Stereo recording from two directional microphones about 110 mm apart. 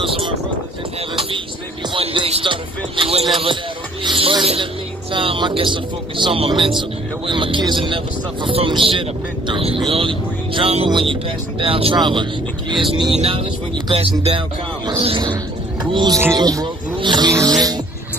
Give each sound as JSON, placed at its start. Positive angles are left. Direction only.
{"t": 0.0, "sound": "speech", "side_deg": -55}
{"t": 2.0, "sound": "music", "side_deg": -65}
{"t": 2.4, "sound": "speech", "side_deg": -50}
{"t": 9.5, "sound": "speech", "side_deg": -60}
{"t": 12.0, "sound": "speech", "side_deg": -45}
{"t": 15.9, "sound": "speech", "side_deg": -45}
{"t": 17.3, "sound": "music", "side_deg": -30}